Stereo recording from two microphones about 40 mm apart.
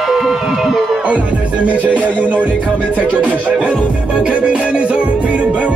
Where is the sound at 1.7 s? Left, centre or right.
Right.